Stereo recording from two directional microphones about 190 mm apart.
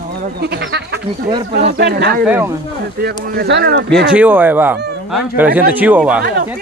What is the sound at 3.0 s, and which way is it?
Speech, 55° right (ahead or behind).